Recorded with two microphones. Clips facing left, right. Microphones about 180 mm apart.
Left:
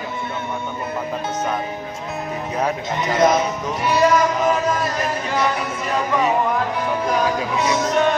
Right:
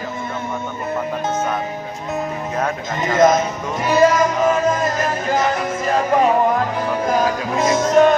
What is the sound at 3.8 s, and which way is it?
Speech, 45° right (ahead or behind).